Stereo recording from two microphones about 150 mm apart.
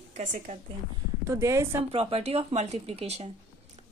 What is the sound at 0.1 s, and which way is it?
Speech, 50° right (ahead or behind).